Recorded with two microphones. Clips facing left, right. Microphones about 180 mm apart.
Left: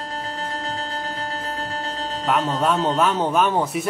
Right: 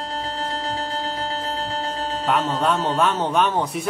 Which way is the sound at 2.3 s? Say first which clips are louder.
Left 1 dB; centre (ahead or behind).